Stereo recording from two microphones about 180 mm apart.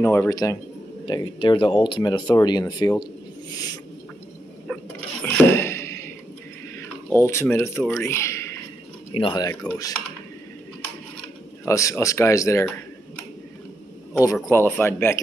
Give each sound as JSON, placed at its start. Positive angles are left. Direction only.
{"t": 0.0, "sound": "speech", "side_deg": 15}
{"t": 3.5, "sound": "owl", "side_deg": 20}
{"t": 4.7, "sound": "mechanisms", "side_deg": 5}
{"t": 5.2, "sound": "a sound", "side_deg": 15}
{"t": 7.2, "sound": "speech", "side_deg": 15}
{"t": 9.1, "sound": "speech", "side_deg": 25}
{"t": 11.6, "sound": "speech", "side_deg": 15}
{"t": 14.1, "sound": "speech", "side_deg": 20}